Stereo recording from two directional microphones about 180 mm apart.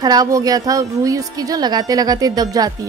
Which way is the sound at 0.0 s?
20° right (ahead or behind).